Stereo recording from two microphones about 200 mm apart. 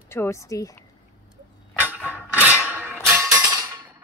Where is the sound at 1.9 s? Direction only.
10° right (ahead or behind).